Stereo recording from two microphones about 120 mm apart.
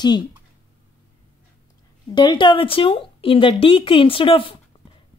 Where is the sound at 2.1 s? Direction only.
40° left (ahead or behind).